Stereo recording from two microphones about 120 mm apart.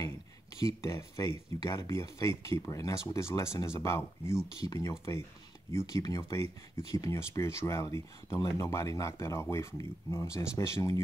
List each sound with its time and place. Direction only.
0.6 s speech: 25° left (ahead or behind)